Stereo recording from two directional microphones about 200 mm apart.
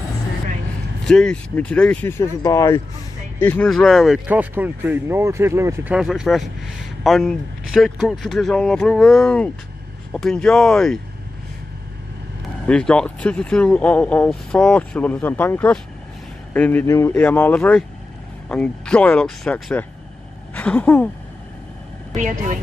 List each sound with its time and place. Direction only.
1.0 s speech: 5° left (ahead or behind); by 5.9 s 15° right (ahead or behind)
5.9 s speech: centre (ahead or behind)
12.6 s speech: 5° left (ahead or behind)
22.1 s speech: 40° right (ahead or behind)